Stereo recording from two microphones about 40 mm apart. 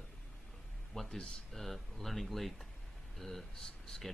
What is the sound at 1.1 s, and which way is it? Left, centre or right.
Speech, centre.